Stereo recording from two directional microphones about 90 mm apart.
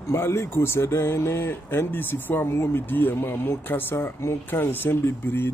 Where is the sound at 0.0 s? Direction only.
30° left (ahead or behind).